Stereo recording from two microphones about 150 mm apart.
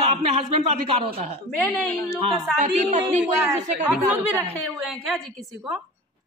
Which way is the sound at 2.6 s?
50° right (ahead or behind).